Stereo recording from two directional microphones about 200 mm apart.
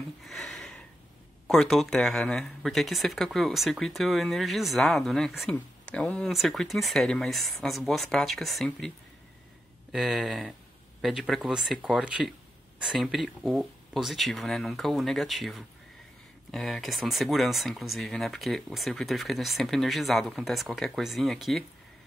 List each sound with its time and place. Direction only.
0.2 s a sound: centre (ahead or behind)
1.5 s speech: centre (ahead or behind)
9.9 s speech: centre (ahead or behind)